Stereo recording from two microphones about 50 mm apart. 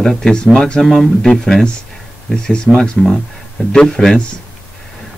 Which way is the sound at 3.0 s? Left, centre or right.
Centre.